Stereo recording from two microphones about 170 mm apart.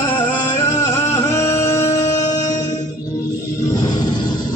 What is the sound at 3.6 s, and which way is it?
Music, 20° left (ahead or behind).